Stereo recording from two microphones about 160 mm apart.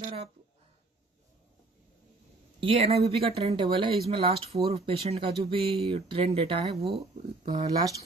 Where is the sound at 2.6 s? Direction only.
40° right (ahead or behind).